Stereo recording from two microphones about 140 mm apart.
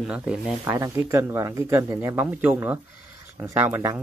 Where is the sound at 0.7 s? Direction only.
20° right (ahead or behind).